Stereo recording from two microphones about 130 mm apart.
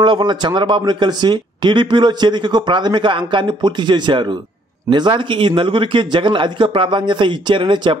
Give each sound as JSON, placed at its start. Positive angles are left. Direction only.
{"t": 0.0, "sound": "speech", "side_deg": -35}